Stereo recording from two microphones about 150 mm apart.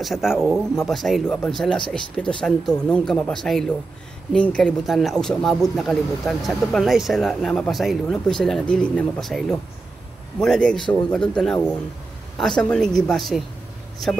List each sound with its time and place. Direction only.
0.0 s speech: centre (ahead or behind)